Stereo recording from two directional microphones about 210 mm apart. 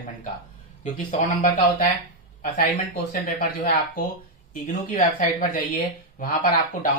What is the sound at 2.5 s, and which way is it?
Speech, 35° left (ahead or behind).